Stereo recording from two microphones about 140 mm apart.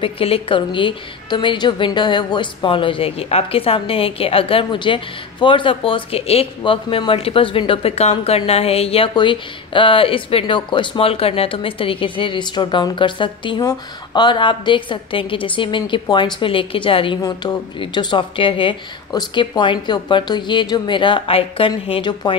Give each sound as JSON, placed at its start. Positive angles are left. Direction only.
{"t": 0.0, "sound": "a woman's voice", "side_deg": 40}